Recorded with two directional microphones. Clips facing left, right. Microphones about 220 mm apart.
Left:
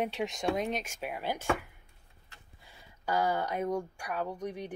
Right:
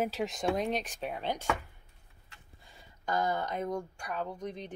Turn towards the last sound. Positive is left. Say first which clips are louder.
# left 2 dB
turn(degrees=10)  # may be behind; listen again after turning